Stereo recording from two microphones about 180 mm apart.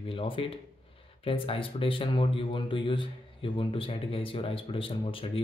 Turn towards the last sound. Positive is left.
turn(degrees=30)  # may be behind; listen again after turning